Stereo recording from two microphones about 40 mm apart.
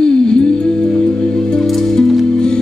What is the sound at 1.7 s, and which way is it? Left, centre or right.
Music, centre.